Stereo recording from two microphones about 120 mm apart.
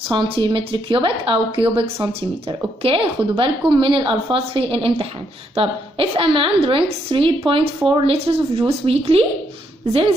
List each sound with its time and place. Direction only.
0.1 s a woman's voice: 40° right (ahead or behind)